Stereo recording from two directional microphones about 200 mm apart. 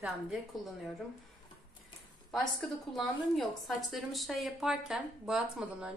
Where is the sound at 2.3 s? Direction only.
Centre (ahead or behind).